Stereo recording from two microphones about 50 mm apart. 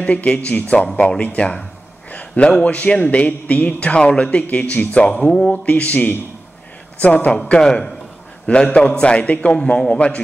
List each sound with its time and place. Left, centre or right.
0.0 s a man's voice: left
1.1 s a sound: left
2.5 s a man's voice: left
7.0 s a man's voice: left
7.5 s a man's voice: centre